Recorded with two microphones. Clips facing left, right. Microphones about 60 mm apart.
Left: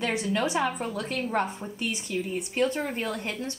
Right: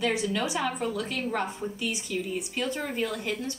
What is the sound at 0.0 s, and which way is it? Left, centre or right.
Speech, left.